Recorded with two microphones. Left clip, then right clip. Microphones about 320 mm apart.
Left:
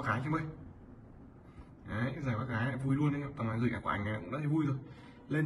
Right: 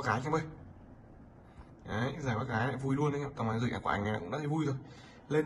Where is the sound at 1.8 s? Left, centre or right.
Centre.